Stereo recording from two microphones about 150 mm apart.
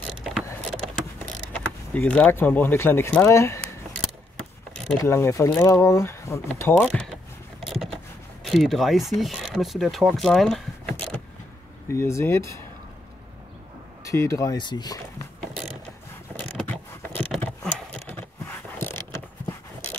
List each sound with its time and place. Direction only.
1.5 s speech: 10° left (ahead or behind)
4.9 s speech: 15° left (ahead or behind)
6.5 s speech: 10° left (ahead or behind)
7.6 s a sound: centre (ahead or behind)
8.5 s speech: centre (ahead or behind)
11.9 s speech: 20° left (ahead or behind)
14.0 s speech: 20° left (ahead or behind)
16.3 s a sound: 10° left (ahead or behind)